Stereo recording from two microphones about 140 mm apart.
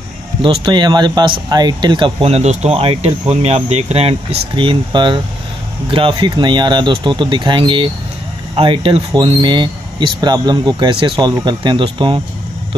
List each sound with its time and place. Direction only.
0.4 s speech: 35° right (ahead or behind)